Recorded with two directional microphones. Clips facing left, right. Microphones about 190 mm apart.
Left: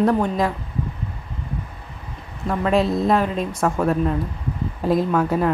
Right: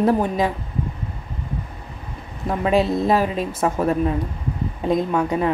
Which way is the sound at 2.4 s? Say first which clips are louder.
Even; centre (ahead or behind).